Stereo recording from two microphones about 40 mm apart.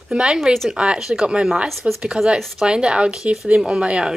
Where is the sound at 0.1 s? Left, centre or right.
Centre.